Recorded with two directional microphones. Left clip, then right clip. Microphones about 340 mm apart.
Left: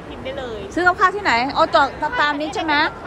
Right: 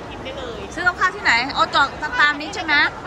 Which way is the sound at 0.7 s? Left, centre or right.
Centre.